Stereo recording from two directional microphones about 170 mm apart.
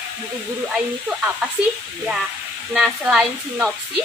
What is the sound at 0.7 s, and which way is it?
Speech, 5° right (ahead or behind).